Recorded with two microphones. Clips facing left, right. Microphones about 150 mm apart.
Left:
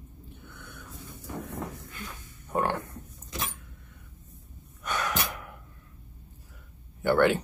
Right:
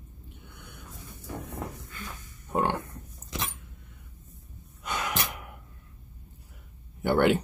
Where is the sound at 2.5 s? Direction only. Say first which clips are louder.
Right 1 dB; 20° right (ahead or behind).